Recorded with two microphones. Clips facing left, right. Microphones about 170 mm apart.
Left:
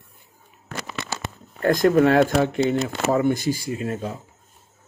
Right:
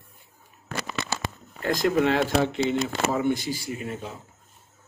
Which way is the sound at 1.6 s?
50° left (ahead or behind).